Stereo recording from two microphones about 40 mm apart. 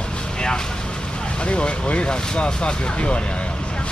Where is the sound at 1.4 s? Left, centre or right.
Left.